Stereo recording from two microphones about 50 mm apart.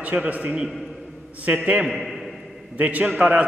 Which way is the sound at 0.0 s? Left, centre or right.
Right.